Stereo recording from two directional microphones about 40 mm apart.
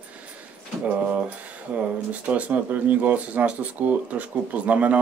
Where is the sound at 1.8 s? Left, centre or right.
Right.